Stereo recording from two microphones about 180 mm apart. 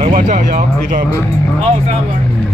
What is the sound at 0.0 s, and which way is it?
Speech, 45° right (ahead or behind).